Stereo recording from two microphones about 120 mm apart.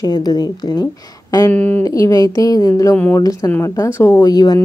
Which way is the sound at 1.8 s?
30° left (ahead or behind).